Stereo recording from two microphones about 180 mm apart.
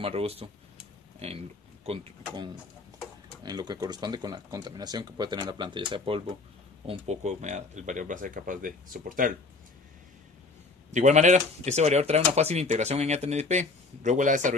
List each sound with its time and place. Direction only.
0.0 s speech: 35° right (ahead or behind)
6.9 s speech: 40° right (ahead or behind)
10.9 s speech: 40° right (ahead or behind)